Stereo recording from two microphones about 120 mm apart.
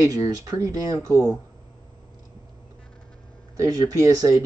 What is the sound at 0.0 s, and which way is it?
Speech, 30° right (ahead or behind).